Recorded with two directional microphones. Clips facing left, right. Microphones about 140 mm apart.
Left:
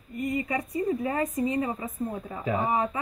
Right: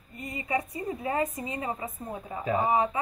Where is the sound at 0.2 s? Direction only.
25° right (ahead or behind).